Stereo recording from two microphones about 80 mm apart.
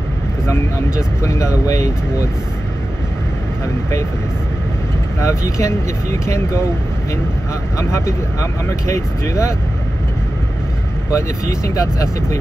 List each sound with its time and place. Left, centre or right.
0.5 s speech: left
5.2 s speech: left
7.7 s speech: left
11.1 s speech: left